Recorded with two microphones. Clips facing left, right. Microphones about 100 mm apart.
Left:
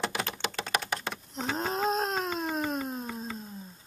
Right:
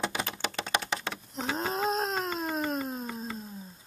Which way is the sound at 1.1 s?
Centre (ahead or behind).